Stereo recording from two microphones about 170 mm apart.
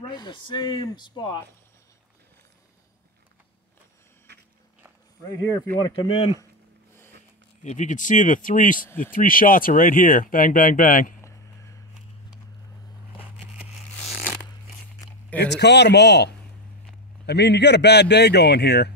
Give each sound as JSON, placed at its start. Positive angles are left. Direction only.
{"t": 0.1, "sound": "speech", "side_deg": 25}
{"t": 5.8, "sound": "speech", "side_deg": 30}
{"t": 7.6, "sound": "speech", "side_deg": 45}
{"t": 14.0, "sound": "a sound", "side_deg": 0}
{"t": 15.3, "sound": "a man's voice", "side_deg": 80}